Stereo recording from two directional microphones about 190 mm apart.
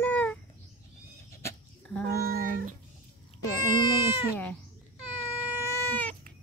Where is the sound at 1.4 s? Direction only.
15° left (ahead or behind).